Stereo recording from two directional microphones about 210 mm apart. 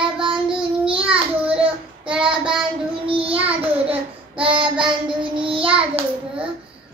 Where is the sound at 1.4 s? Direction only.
25° right (ahead or behind).